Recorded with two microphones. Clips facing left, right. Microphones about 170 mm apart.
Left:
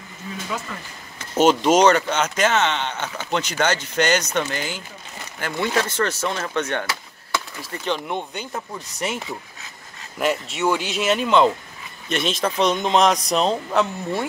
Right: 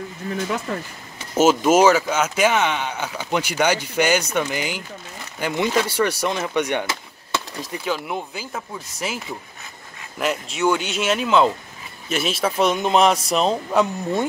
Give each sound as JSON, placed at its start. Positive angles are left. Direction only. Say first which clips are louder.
{"t": 1.3, "sound": "speech", "louder": "right 1 dB", "side_deg": -5}